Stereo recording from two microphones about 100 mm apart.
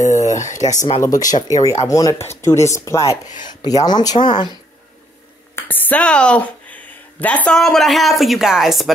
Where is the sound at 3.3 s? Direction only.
45° left (ahead or behind).